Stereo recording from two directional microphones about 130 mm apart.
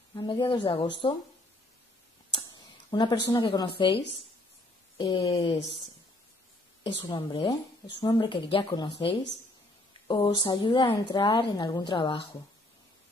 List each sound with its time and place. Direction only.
0.1 s a woman's voice: 35° left (ahead or behind)
2.3 s a woman's voice: 35° left (ahead or behind)
8.7 s a woman's voice: 35° left (ahead or behind)